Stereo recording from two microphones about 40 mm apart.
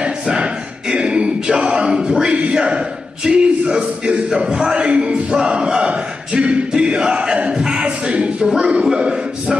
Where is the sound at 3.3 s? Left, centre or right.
Centre.